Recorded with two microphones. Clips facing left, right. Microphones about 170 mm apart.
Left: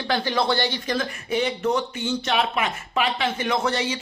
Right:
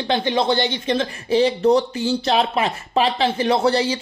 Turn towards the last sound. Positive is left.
turn(degrees=-35)  # may be behind; listen again after turning